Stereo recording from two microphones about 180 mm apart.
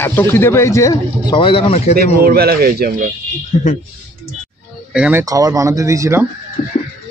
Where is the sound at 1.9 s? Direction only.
55° right (ahead or behind).